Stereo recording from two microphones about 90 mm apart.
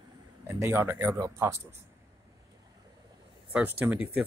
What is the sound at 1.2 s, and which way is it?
Speech, 35° right (ahead or behind).